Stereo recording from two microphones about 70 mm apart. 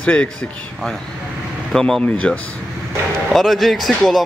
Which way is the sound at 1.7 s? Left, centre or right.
Centre.